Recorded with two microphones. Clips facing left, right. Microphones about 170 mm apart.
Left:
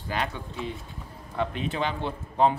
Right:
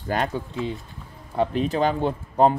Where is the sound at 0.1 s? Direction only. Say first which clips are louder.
Right 6 dB; 45° right (ahead or behind).